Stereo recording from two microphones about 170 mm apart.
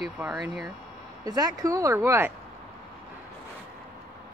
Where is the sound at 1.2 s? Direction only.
20° right (ahead or behind).